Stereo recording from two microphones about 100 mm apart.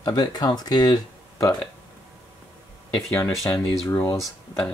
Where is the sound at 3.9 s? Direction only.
25° left (ahead or behind).